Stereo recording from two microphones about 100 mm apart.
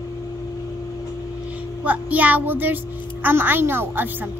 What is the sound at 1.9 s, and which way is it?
A woman's voice, 15° right (ahead or behind).